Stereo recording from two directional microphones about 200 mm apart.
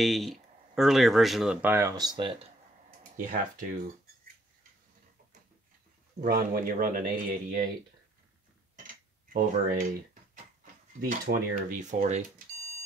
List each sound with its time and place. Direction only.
0.0 s speech: centre (ahead or behind); by 2.4 s 25° right (ahead or behind)
3.0 s speech: 45° right (ahead or behind)
6.2 s speech: 45° right (ahead or behind)
8.7 s cutlery: 40° right (ahead or behind)
11.3 s speech: 60° right (ahead or behind)
11.8 s speech: 35° right (ahead or behind)